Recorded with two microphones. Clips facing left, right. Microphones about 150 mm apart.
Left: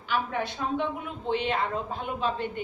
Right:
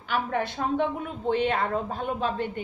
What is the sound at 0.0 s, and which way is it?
A woman's voice, 45° right (ahead or behind).